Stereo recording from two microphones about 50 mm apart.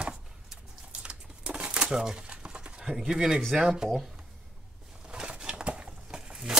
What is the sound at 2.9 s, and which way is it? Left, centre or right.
Speech, centre.